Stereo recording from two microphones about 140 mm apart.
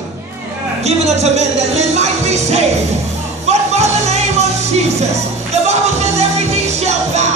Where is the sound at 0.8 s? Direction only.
50° right (ahead or behind).